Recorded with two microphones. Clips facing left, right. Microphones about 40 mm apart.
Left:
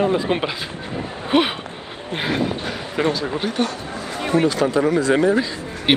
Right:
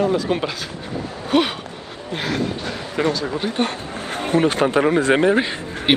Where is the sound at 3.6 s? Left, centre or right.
Right.